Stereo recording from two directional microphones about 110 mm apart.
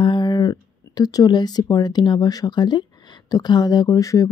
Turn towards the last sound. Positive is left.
turn(degrees=30)  # may be behind; listen again after turning